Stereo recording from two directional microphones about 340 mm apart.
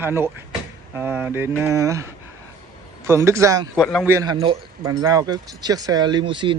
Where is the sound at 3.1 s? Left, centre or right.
Centre.